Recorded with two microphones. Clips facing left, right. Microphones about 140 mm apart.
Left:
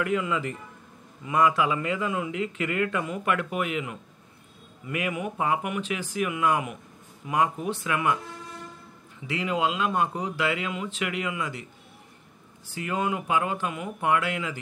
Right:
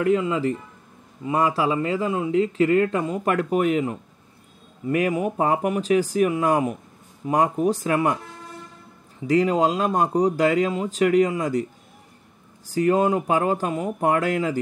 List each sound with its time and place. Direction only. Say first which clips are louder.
0.0 s speech: right 6 dB; 30° right (ahead or behind)
9.3 s speech: right 8 dB; 40° right (ahead or behind)
12.6 s speech: right 9 dB; 40° right (ahead or behind)